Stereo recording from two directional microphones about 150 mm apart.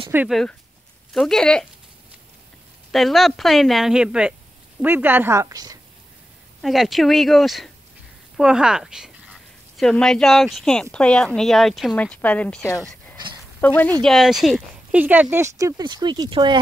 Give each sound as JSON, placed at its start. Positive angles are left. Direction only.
{"t": 0.3, "sound": "a woman's voice", "side_deg": 0}
{"t": 2.9, "sound": "a woman's voice", "side_deg": 0}
{"t": 6.6, "sound": "a woman's voice", "side_deg": 0}
{"t": 14.0, "sound": "speech", "side_deg": 0}